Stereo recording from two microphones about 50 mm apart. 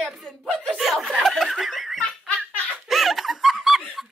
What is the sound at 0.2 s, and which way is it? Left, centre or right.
Speech, centre.